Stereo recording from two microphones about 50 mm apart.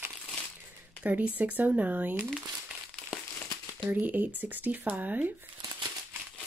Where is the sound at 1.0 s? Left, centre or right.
Right.